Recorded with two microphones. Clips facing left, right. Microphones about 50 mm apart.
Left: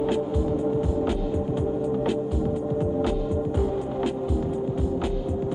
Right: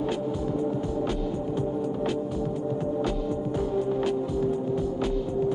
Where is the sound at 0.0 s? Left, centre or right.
Centre.